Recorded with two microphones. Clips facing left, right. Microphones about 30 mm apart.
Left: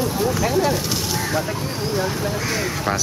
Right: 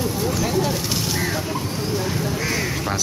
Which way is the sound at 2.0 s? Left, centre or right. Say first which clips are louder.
Left 1 dB; centre.